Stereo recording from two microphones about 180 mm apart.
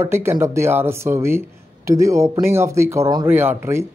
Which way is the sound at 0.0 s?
15° right (ahead or behind).